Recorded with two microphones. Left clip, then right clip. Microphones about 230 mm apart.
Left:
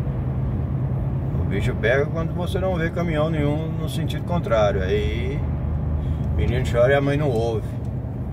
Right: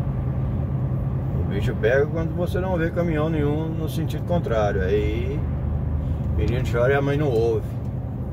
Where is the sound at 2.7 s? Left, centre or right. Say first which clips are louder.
Even; left.